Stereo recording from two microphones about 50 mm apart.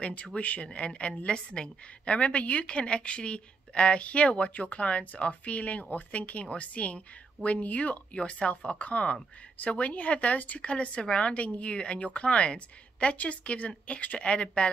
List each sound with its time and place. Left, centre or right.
0.0 s a woman's voice: left
10.7 s a woman's voice: left